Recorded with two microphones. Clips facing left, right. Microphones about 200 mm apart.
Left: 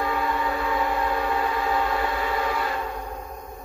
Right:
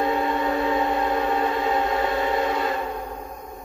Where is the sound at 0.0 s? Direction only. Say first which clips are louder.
Right 3 dB; 25° right (ahead or behind).